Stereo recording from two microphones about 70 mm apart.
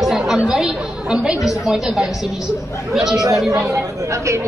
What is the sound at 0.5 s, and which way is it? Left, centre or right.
A woman's voice, centre.